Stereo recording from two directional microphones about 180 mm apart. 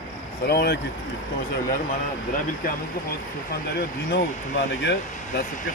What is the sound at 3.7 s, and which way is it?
Speech, 75° left (ahead or behind).